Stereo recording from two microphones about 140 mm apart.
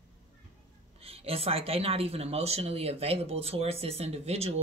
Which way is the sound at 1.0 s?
45° right (ahead or behind).